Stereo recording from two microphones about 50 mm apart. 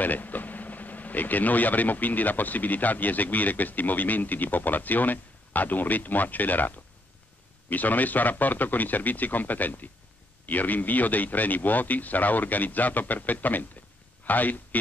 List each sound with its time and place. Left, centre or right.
0.0 s a man's voice: left